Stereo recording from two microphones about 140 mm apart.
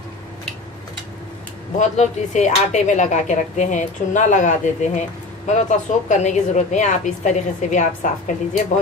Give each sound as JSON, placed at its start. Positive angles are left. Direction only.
{"t": 1.8, "sound": "speech", "side_deg": 60}